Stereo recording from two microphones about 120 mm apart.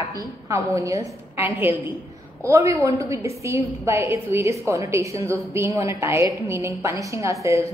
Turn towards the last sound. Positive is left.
turn(degrees=-25)  # may be behind; listen again after turning